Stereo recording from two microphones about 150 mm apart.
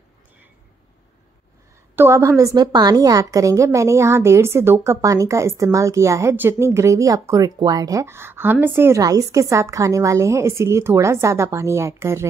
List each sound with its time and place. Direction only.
2.0 s a woman's voice: 15° right (ahead or behind)